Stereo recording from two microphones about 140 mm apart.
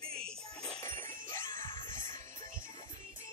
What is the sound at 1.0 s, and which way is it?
Music, 15° left (ahead or behind).